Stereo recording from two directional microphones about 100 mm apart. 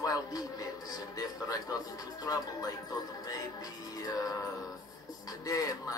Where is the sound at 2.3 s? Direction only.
35° left (ahead or behind).